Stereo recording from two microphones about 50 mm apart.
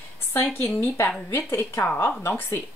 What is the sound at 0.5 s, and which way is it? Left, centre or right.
Speech, left.